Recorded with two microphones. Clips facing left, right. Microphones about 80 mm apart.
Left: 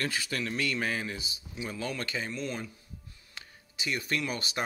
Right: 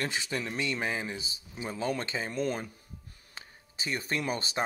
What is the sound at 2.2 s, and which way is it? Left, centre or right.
Speech, right.